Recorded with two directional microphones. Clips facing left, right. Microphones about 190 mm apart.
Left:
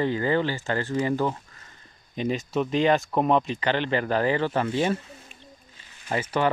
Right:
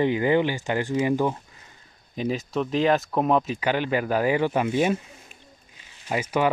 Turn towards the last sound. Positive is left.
turn(degrees=-10)  # may be behind; listen again after turning